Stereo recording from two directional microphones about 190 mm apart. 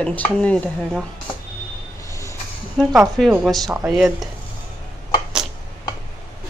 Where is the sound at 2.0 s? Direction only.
15° left (ahead or behind).